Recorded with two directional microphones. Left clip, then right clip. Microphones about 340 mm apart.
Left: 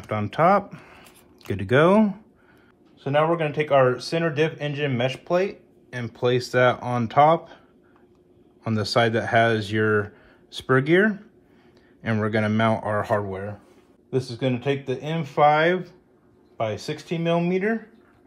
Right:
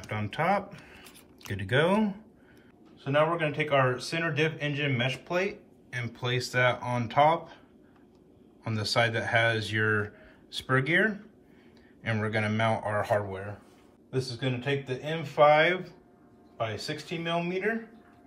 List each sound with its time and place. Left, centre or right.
0.2 s speech: centre
3.0 s speech: centre
8.6 s speech: centre
14.6 s speech: centre